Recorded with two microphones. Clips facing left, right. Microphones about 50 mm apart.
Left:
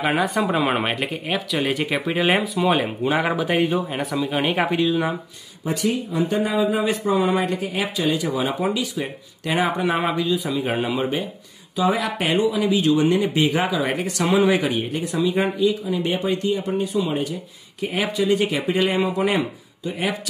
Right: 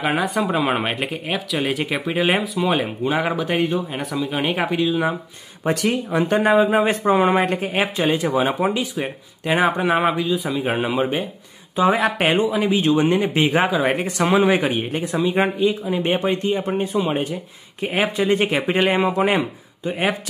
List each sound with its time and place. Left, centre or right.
0.0 s speech: centre
5.7 s speech: right
9.8 s a man's voice: centre
11.7 s speech: right